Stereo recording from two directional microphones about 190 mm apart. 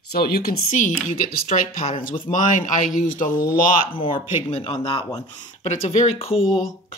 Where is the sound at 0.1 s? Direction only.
55° left (ahead or behind).